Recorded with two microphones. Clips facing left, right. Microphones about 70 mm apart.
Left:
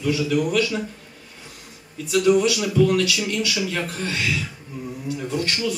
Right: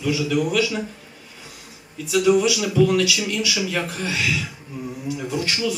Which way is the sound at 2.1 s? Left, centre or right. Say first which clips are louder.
Even; centre.